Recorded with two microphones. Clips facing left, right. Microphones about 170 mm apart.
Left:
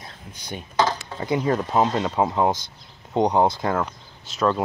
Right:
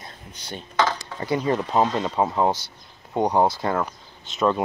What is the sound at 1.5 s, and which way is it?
Speech, centre (ahead or behind).